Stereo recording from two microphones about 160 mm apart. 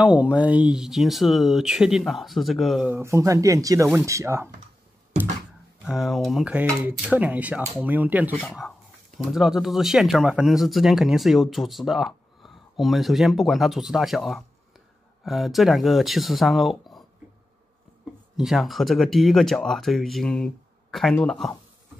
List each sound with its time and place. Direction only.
0.0 s speech: 5° right (ahead or behind)
2.9 s speech: 15° right (ahead or behind)
5.9 s speech: centre (ahead or behind)
8.4 s speech: centre (ahead or behind)
18.3 s speech: centre (ahead or behind)